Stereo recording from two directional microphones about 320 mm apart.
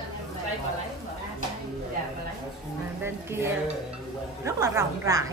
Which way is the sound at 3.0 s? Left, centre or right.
Centre.